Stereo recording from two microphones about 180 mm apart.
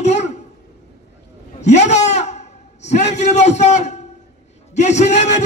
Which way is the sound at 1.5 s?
40° left (ahead or behind).